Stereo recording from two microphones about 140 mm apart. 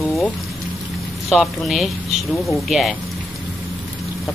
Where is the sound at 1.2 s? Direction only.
Centre (ahead or behind).